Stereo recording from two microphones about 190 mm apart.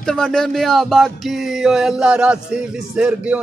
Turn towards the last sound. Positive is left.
turn(degrees=-5)  # may be behind; listen again after turning